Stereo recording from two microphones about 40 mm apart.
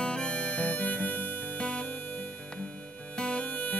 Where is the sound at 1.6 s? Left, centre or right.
Left.